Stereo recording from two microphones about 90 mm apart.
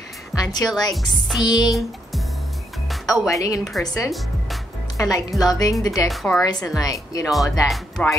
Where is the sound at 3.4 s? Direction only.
40° left (ahead or behind).